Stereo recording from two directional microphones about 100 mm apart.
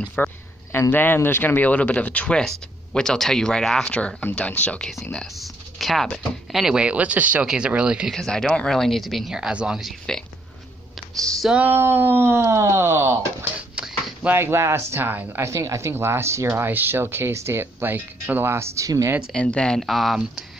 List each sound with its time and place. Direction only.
0.1 s speech: 20° left (ahead or behind); by 8.1 s 10° right (ahead or behind)
8.1 s speech: 5° left (ahead or behind)
11.5 s speech: 20° right (ahead or behind)
13.6 s dog: 10° right (ahead or behind)
14.3 s speech: 25° right (ahead or behind)
19.3 s speech: 10° left (ahead or behind)